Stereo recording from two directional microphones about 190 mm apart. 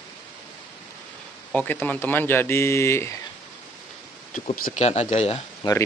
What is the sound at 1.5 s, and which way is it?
A man's voice, 10° left (ahead or behind).